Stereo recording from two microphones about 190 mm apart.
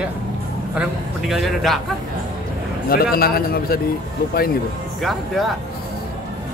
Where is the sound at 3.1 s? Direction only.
50° left (ahead or behind).